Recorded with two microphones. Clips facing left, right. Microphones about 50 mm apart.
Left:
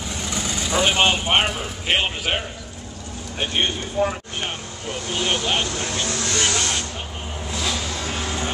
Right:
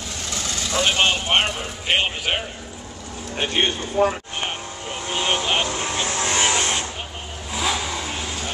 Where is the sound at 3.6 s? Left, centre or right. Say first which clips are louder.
Right 2 dB; right.